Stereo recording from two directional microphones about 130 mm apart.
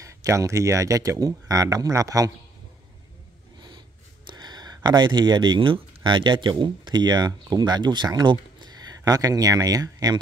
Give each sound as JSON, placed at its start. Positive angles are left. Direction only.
{"t": 0.0, "sound": "speech", "side_deg": -25}
{"t": 4.3, "sound": "speech", "side_deg": -35}